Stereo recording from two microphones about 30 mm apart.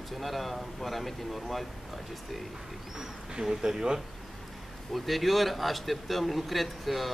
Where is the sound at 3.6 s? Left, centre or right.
Right.